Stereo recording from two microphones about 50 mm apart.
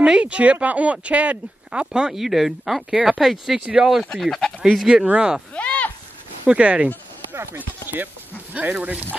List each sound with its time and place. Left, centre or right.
0.2 s speech: right
1.9 s speech: centre
4.0 s speech: centre
5.0 s speech: right
5.5 s a sound: left
6.4 s speech: right
7.5 s speech: right